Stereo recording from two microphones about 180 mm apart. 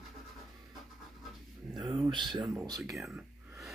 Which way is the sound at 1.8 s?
20° right (ahead or behind).